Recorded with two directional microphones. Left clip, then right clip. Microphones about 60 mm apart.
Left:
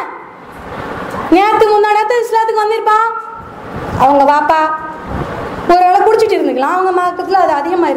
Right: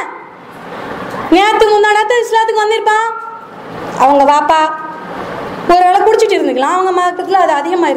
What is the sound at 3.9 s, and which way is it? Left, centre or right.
A woman's voice, right.